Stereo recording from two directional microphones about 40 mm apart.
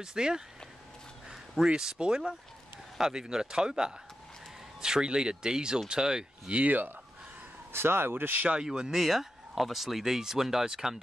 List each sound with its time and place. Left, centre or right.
0.0 s speech: centre
1.6 s speech: centre
6.5 s speech: right
7.7 s speech: right
8.6 s speech: centre
8.9 s speech: centre